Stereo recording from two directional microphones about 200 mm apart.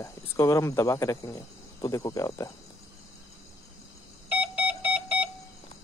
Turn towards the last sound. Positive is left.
turn(degrees=-5)  # may be behind; listen again after turning